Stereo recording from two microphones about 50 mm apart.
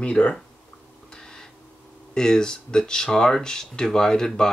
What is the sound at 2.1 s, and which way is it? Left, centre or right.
Speech, centre.